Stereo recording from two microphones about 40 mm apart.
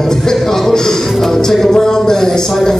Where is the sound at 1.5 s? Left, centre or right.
Centre.